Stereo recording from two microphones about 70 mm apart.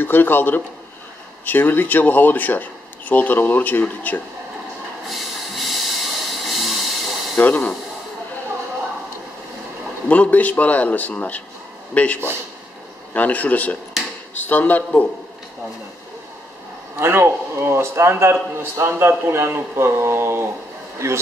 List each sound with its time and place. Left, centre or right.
0.0 s speech: left
5.0 s a sound: centre
7.3 s speech: left
10.0 s speech: centre
17.0 s a man's voice: right